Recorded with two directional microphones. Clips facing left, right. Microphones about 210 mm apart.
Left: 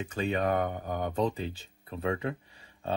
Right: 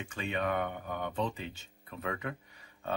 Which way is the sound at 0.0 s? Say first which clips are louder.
Left 5 dB; 40° left (ahead or behind).